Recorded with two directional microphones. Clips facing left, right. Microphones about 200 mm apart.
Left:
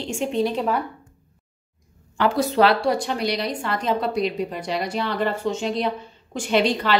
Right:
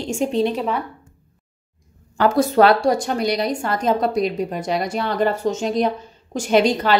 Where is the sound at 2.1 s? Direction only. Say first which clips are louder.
Right 4 dB; 45° right (ahead or behind).